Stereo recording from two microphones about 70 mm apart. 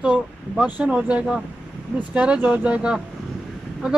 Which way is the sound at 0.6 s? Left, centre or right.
Right.